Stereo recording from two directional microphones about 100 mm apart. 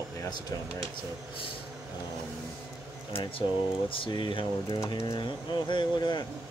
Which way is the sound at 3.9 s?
60° left (ahead or behind).